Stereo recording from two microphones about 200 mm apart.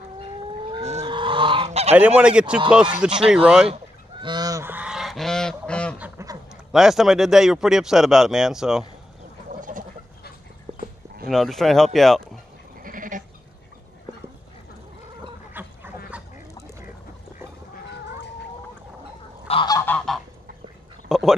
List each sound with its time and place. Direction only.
0.7 s chicken: 30° right (ahead or behind)
1.0 s goose: 25° right (ahead or behind)
2.0 s speech: 5° right (ahead or behind)
3.6 s goose: 25° right (ahead or behind); by 5.9 s 5° left (ahead or behind)
5.9 s duck: 10° right (ahead or behind)
6.5 s speech: 5° right (ahead or behind)
9.6 s a sound: 40° right (ahead or behind)
10.7 s a sound: 25° right (ahead or behind)
11.2 s speech: centre (ahead or behind)
12.8 s goat: 45° right (ahead or behind)
15.6 s duck: 10° right (ahead or behind)
19.4 s goose: 25° left (ahead or behind)
19.8 s goose: 10° left (ahead or behind)
21.1 s a sound: centre (ahead or behind)